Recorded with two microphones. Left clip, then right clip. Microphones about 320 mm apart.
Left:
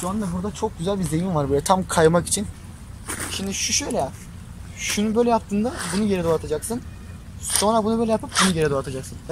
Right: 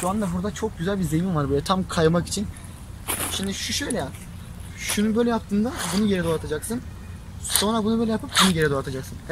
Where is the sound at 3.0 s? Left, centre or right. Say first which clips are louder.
Right 1 dB; centre.